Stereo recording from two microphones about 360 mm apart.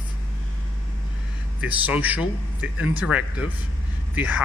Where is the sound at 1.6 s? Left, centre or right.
Centre.